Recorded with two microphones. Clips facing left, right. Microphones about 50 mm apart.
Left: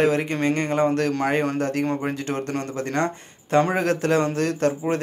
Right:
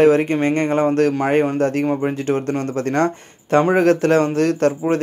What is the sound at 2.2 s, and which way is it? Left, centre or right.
Speech, right.